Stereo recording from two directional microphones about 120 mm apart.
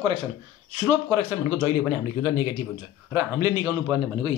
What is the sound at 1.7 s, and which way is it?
A man's voice, 25° right (ahead or behind).